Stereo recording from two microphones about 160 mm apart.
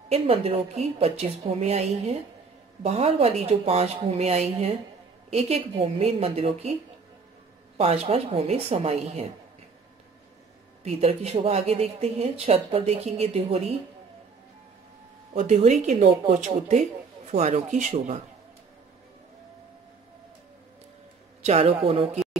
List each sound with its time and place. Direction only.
0.1 s speech: 40° right (ahead or behind)
7.7 s speech: 40° right (ahead or behind)
10.8 s speech: 40° right (ahead or behind)
15.3 s speech: 50° right (ahead or behind)
21.5 s speech: 35° right (ahead or behind)